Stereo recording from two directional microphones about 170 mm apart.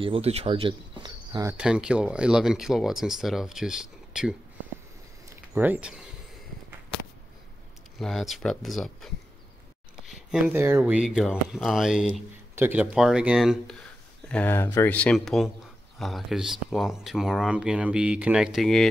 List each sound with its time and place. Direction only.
0.0 s speech: 35° right (ahead or behind)
1.6 s speech: 5° right (ahead or behind)
5.3 s a sound: 10° right (ahead or behind)
8.0 s speech: centre (ahead or behind)
10.0 s a sound: centre (ahead or behind)
10.5 s speech: 10° right (ahead or behind)
14.3 s speech: 10° left (ahead or behind)